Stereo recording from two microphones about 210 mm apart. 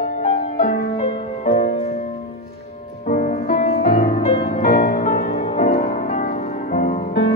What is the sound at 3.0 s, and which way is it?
Music, 45° left (ahead or behind).